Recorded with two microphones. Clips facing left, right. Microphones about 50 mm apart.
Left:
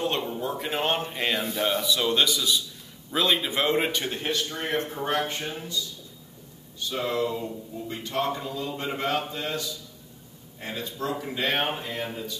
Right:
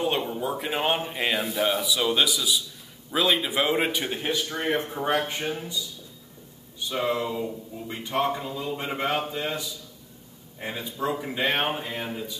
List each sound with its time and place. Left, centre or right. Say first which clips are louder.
0.0 s a man's voice: right 2 dB; centre
6.8 s a man's voice: right 1 dB; centre